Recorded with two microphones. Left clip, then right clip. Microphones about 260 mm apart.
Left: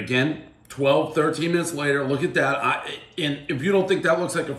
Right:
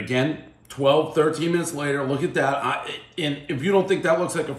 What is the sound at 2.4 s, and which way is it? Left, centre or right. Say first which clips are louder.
Speech: even; centre.